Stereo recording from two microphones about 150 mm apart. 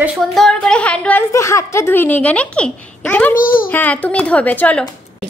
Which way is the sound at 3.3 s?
70° left (ahead or behind).